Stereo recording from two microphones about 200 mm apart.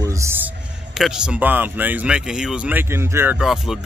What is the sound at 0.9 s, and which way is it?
Speech, 5° right (ahead or behind).